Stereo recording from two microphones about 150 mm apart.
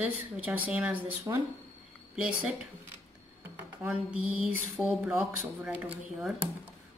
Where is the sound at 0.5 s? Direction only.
10° right (ahead or behind).